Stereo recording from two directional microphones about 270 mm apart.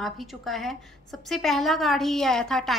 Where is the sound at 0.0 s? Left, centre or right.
Centre.